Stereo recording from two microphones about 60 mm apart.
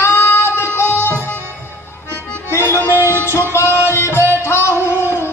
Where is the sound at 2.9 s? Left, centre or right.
Right.